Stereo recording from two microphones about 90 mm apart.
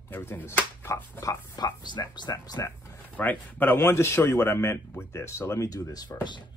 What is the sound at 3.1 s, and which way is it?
A man's voice, 20° left (ahead or behind).